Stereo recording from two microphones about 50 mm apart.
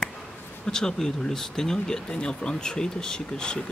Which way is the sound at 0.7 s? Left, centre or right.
Centre.